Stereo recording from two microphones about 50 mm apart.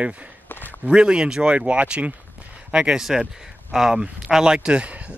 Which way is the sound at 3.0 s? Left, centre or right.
Centre.